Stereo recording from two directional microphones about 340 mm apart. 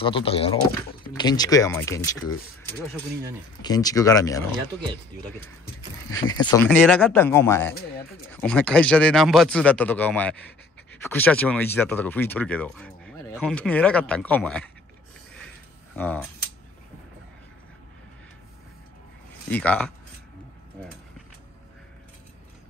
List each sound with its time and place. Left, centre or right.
0.0 s speech: centre
3.6 s speech: centre
6.0 s speech: centre
16.0 s speech: centre
19.5 s speech: centre